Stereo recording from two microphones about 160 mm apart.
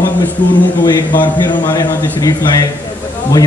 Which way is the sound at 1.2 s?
25° left (ahead or behind).